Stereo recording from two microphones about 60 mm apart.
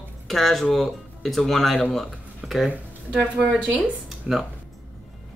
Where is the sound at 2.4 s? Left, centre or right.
Centre.